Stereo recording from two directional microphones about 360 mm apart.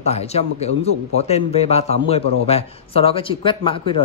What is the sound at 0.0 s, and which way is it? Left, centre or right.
Speech, centre.